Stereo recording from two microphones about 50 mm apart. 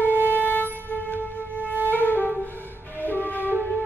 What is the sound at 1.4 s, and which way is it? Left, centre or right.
Music, right.